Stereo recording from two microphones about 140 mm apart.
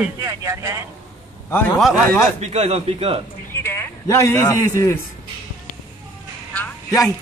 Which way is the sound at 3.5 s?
15° left (ahead or behind).